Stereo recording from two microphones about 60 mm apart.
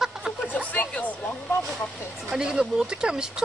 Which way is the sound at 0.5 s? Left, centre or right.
Left.